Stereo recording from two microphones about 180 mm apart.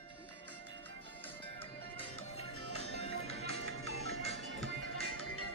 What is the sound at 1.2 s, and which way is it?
Music, 30° left (ahead or behind).